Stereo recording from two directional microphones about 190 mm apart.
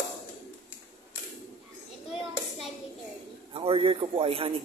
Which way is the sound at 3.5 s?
30° right (ahead or behind).